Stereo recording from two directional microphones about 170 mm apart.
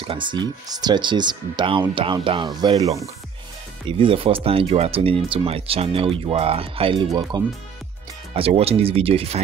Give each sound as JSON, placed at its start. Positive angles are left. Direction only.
{"t": 0.0, "sound": "speech", "side_deg": -30}
{"t": 4.0, "sound": "speech", "side_deg": -30}
{"t": 8.3, "sound": "speech", "side_deg": -35}